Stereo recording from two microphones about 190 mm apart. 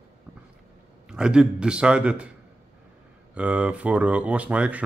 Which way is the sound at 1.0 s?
5° right (ahead or behind).